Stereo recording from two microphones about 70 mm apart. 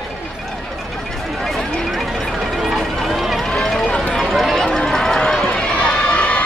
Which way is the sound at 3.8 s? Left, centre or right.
Centre.